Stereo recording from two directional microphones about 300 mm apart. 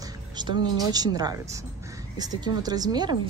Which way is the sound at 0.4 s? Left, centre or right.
Centre.